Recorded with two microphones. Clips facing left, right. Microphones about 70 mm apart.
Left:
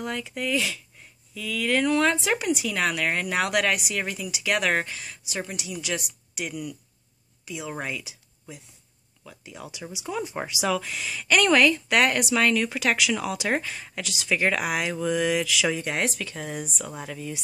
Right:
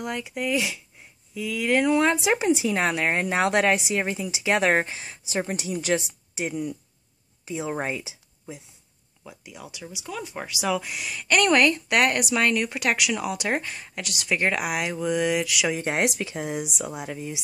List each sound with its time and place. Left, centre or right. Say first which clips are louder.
0.0 s a woman's voice: right 1 dB; centre; by 5.9 s right
5.9 s speech: right 4 dB; right
9.2 s speech: even; centre
9.7 s speech: left 3 dB; centre
10.6 s a woman's voice: right 1 dB; centre
15.7 s speech: right 2 dB; right
16.2 s speech: right 4 dB; centre